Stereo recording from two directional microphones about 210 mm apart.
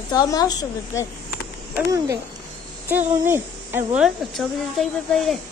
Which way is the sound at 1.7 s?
15° right (ahead or behind).